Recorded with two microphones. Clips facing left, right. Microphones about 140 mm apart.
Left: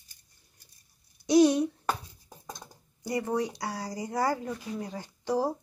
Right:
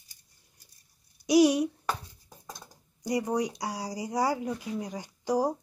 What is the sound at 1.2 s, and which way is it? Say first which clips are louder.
Speech: even; 10° right (ahead or behind).